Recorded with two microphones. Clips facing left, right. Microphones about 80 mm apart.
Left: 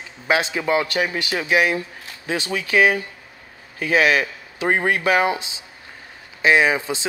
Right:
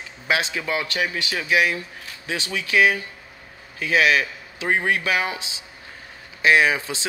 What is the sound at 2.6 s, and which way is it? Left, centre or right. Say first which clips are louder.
Speech: left 2 dB; left.